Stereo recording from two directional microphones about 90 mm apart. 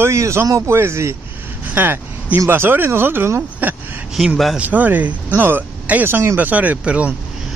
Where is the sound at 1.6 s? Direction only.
20° right (ahead or behind).